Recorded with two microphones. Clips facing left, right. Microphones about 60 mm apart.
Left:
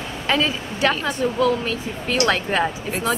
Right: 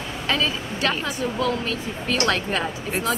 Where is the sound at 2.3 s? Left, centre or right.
Centre.